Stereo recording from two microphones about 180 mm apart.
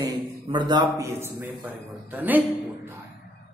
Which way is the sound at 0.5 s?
25° right (ahead or behind).